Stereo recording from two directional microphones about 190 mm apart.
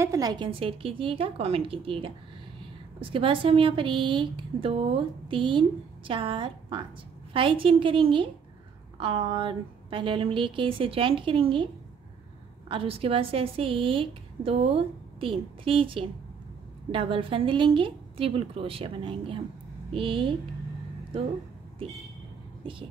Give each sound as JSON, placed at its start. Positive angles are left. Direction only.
{"t": 0.0, "sound": "a woman's voice", "side_deg": -15}
{"t": 22.6, "sound": "speech", "side_deg": -25}